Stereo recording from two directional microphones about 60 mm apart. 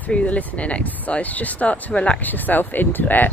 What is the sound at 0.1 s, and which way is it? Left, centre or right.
Speech, left.